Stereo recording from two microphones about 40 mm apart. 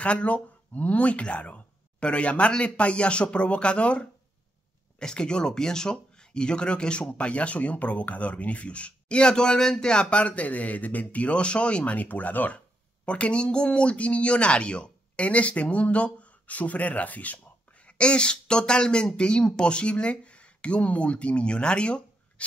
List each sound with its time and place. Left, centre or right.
0.0 s speech: left
11.8 s speech: left
12.5 s speech: left